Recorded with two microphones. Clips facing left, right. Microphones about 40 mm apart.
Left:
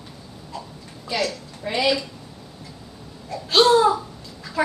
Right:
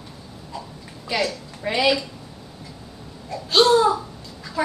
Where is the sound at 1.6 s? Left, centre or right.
Right.